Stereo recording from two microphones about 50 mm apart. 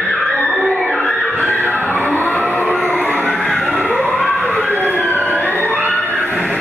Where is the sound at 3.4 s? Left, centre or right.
Centre.